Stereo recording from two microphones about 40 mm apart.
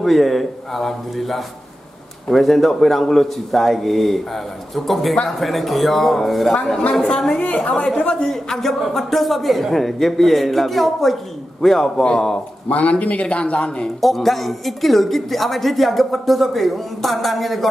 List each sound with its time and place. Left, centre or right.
0.0 s speech: centre
7.2 s a woman's voice: left
8.2 s a man's voice: centre
12.6 s speech: left
14.0 s speech: centre